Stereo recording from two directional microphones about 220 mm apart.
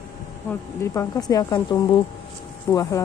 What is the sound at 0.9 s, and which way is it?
A woman's voice, 15° left (ahead or behind).